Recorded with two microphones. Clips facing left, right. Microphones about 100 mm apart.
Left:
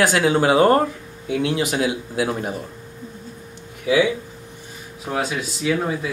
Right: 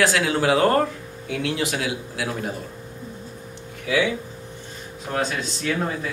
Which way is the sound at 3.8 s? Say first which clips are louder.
Left 4 dB; 20° left (ahead or behind).